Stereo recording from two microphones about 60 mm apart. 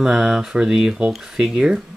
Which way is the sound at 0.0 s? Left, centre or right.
Centre.